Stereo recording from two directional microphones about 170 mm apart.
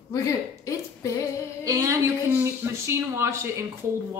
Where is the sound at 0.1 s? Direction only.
20° left (ahead or behind).